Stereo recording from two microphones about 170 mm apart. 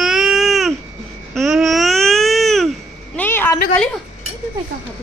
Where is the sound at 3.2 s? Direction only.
10° left (ahead or behind).